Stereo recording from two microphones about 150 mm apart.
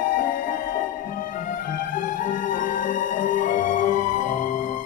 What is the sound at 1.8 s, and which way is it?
Music, 60° left (ahead or behind).